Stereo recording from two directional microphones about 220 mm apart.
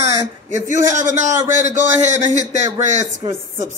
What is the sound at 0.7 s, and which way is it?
Speech, 35° right (ahead or behind).